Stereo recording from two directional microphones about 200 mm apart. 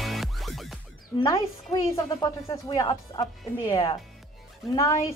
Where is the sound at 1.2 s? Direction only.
20° left (ahead or behind).